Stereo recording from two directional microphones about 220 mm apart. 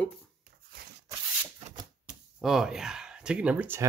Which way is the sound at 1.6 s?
30° right (ahead or behind).